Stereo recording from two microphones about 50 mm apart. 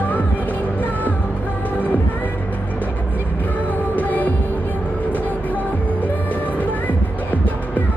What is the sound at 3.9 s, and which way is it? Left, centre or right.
Music, left.